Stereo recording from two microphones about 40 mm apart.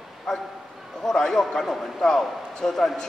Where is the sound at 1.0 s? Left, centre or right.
Centre.